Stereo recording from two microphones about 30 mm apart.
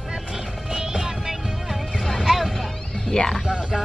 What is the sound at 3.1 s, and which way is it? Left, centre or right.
Music, left.